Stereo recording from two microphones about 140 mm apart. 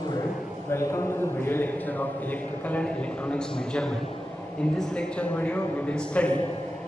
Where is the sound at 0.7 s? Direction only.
20° left (ahead or behind).